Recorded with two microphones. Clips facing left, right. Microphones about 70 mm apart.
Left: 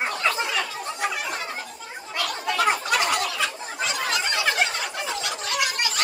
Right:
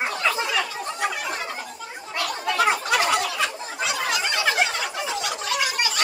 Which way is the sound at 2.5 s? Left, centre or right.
Right.